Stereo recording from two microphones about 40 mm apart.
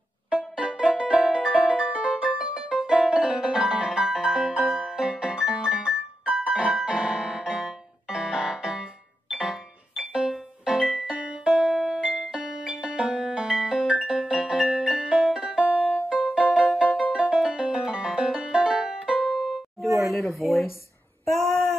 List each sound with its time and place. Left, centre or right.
0.3 s music: right
16.1 s music: right; by 20.6 s centre
21.3 s a sound: centre